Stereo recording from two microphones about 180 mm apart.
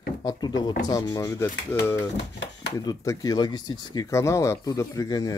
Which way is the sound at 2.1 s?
65° left (ahead or behind).